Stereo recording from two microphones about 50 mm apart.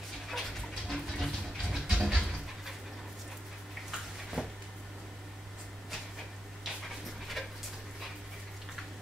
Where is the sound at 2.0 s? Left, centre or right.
Centre.